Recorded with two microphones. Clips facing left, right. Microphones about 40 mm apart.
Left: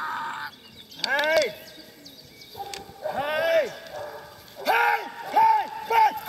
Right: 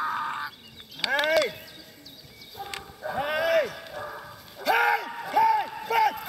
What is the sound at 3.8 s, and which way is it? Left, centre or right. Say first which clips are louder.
Dog: even; centre.